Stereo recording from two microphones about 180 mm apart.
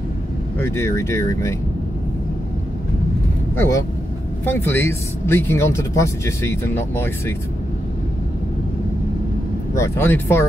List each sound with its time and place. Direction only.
0.6 s speech: 15° left (ahead or behind)
3.5 s speech: 15° left (ahead or behind)
9.8 s speech: 10° left (ahead or behind)